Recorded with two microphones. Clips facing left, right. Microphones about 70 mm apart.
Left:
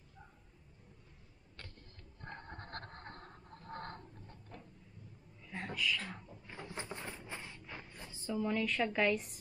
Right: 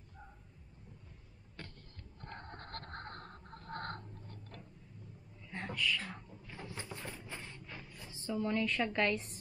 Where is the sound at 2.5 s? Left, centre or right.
Right.